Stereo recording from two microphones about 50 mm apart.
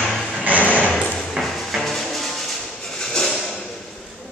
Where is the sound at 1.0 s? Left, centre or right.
Centre.